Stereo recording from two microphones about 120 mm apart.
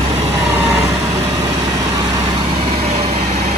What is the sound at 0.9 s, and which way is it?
Vehicle, 25° right (ahead or behind).